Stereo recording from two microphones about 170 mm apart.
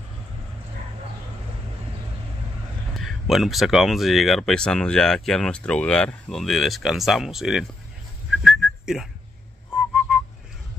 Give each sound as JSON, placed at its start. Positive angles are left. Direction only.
{"t": 3.0, "sound": "speech", "side_deg": 0}
{"t": 8.4, "sound": "whistling", "side_deg": 0}